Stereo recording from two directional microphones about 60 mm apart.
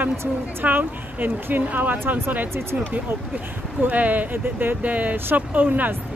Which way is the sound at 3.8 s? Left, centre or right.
Right.